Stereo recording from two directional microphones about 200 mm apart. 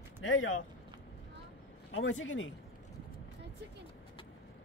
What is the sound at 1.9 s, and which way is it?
Speech, 75° left (ahead or behind).